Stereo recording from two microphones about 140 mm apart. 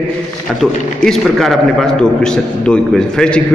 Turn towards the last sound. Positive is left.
turn(degrees=5)  # may be behind; listen again after turning